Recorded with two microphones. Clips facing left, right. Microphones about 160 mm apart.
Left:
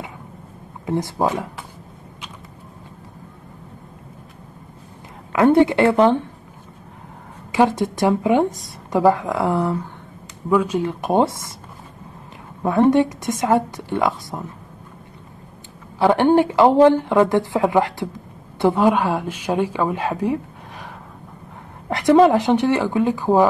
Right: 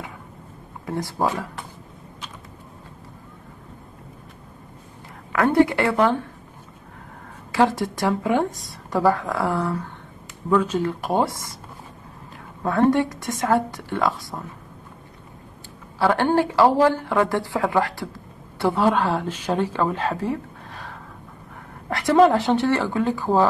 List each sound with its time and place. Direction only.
0.8 s a woman's voice: 20° left (ahead or behind)
5.3 s a woman's voice: 20° left (ahead or behind)
7.5 s a woman's voice: 20° left (ahead or behind)
12.6 s a woman's voice: 20° left (ahead or behind)
16.0 s a woman's voice: 20° left (ahead or behind)